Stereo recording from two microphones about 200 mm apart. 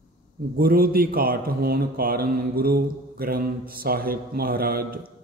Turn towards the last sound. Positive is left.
turn(degrees=-50)  # may be behind; listen again after turning